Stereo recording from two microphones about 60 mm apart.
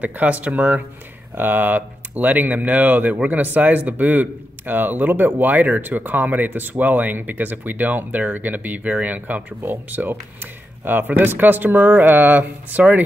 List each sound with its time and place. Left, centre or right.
0.0 s speech: right